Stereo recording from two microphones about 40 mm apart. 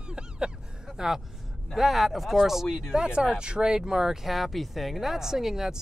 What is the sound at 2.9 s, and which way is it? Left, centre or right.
Speech, right.